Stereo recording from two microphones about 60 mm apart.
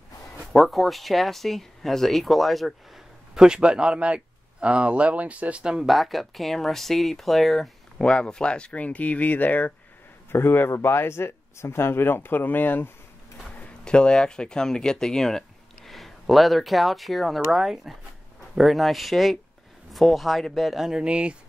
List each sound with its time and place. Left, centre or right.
0.5 s speech: centre
3.3 s speech: centre
8.0 s speech: centre
10.3 s speech: left
13.8 s speech: centre
21.0 s speech: centre